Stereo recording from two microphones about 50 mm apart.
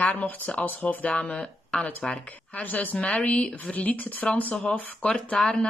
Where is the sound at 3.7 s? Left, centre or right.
Left.